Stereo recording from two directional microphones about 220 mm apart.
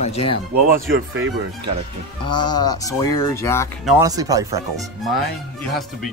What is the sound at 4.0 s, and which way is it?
Speech, 15° right (ahead or behind).